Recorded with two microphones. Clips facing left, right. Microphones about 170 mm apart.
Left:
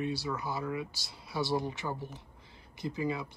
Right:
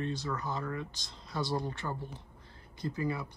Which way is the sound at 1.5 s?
20° left (ahead or behind).